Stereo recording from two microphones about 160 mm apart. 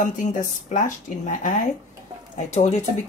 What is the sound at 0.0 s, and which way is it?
Speech, 55° left (ahead or behind).